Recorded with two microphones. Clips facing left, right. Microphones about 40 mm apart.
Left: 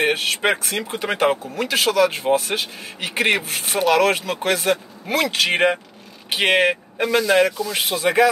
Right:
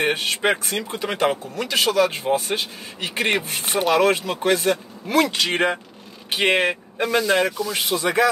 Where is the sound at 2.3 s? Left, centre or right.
Centre.